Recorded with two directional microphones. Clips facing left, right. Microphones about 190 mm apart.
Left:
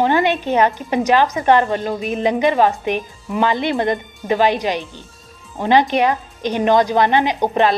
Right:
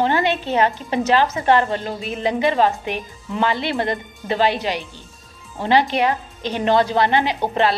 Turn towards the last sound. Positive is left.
turn(degrees=15)  # may be behind; listen again after turning